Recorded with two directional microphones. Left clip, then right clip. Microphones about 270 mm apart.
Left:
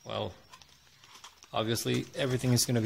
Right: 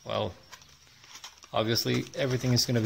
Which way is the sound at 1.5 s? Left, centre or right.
Centre.